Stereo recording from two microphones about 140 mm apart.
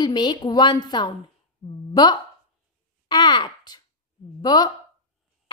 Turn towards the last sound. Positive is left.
turn(degrees=30)  # may be behind; listen again after turning